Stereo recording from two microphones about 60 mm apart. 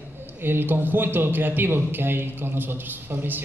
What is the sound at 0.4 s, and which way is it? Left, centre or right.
A man's voice, right.